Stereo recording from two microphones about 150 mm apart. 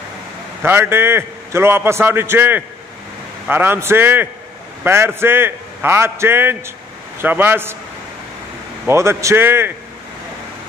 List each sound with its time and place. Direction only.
0.6 s a man's voice: 15° right (ahead or behind)
8.8 s a man's voice: 15° right (ahead or behind)